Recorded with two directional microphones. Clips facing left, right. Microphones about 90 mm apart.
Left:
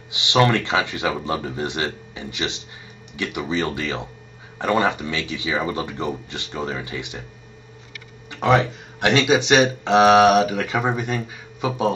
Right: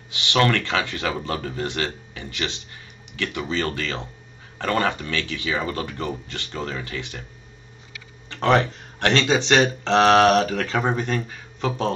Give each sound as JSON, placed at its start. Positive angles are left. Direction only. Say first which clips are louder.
{"t": 0.1, "sound": "speech", "louder": "left 2 dB", "side_deg": 20}
{"t": 8.3, "sound": "speech", "louder": "left 1 dB", "side_deg": 10}